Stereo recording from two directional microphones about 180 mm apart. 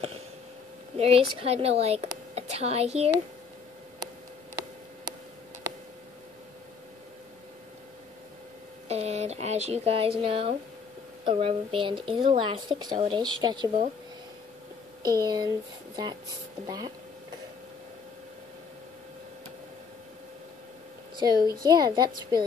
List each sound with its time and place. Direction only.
0.9 s speech: 35° right (ahead or behind)
8.8 s speech: 35° right (ahead or behind)
15.0 s speech: 20° right (ahead or behind)
21.2 s a child's voice: 20° right (ahead or behind)